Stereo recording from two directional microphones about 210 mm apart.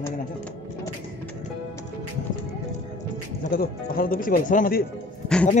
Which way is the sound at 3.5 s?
45° left (ahead or behind).